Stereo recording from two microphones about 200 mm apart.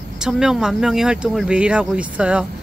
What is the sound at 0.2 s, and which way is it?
Speech, 5° right (ahead or behind).